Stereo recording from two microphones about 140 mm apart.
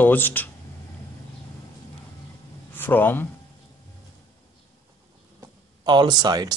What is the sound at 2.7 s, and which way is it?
Speech, 15° left (ahead or behind).